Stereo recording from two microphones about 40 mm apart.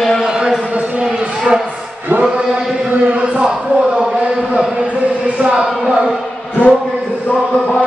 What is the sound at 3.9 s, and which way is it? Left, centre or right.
Speech, centre.